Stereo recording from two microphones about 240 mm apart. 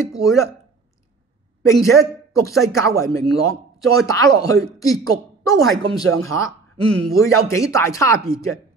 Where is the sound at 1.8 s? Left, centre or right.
Centre.